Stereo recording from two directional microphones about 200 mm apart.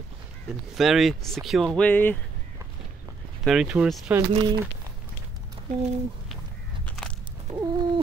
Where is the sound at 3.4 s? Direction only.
Centre (ahead or behind).